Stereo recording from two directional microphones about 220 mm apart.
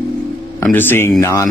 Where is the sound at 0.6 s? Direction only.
10° left (ahead or behind).